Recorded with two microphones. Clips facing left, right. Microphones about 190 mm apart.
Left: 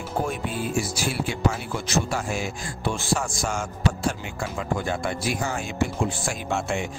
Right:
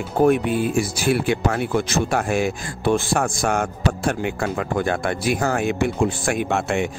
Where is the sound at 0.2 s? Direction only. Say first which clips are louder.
Right 12 dB; 60° right (ahead or behind).